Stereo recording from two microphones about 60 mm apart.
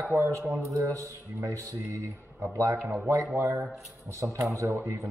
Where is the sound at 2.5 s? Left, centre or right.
Right.